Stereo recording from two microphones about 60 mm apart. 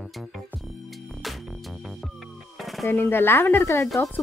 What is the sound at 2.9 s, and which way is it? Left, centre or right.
Speech, left.